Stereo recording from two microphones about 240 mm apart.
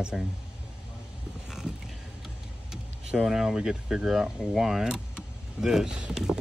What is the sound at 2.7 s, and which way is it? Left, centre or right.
Vehicle, centre.